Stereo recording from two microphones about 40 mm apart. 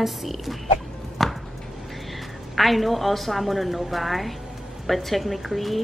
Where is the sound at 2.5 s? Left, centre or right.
Centre.